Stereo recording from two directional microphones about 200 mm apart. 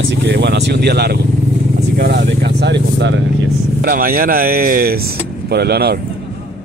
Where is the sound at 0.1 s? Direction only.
60° right (ahead or behind).